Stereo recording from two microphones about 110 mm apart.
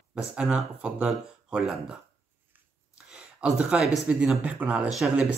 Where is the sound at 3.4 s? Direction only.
10° right (ahead or behind).